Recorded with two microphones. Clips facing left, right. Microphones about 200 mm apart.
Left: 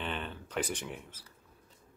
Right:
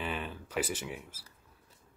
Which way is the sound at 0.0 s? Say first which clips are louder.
Right 1 dB; 5° right (ahead or behind).